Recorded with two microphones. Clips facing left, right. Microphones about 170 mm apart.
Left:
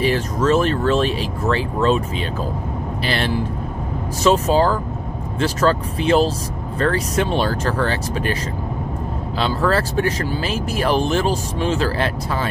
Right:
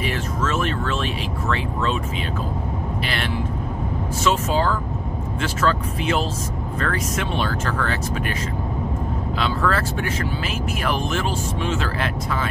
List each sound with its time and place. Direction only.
0.0 s speech: 35° left (ahead or behind)
3.1 s speech: 35° left (ahead or behind)
9.4 s speech: 35° left (ahead or behind)